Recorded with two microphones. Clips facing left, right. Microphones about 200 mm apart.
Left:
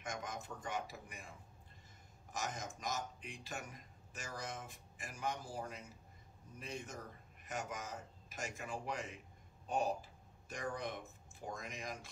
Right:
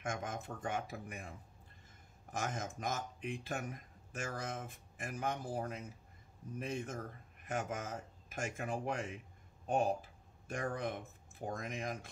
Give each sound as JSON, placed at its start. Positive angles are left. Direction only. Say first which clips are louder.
{"t": 0.0, "sound": "speech", "louder": "right 4 dB", "side_deg": -55}
{"t": 2.3, "sound": "speech", "louder": "right 4 dB", "side_deg": -55}